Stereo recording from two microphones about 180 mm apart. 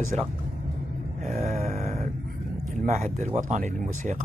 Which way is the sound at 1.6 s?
40° right (ahead or behind).